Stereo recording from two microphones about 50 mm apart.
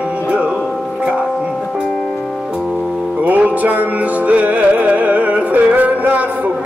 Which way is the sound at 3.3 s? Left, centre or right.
Right.